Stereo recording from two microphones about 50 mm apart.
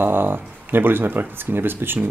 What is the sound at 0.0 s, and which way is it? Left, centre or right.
Speech, right.